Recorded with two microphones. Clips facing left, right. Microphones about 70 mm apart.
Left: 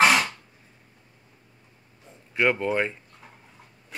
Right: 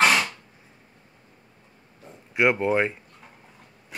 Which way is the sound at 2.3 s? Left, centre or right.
Centre.